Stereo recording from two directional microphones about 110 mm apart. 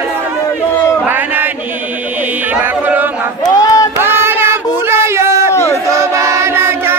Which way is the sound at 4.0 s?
20° right (ahead or behind).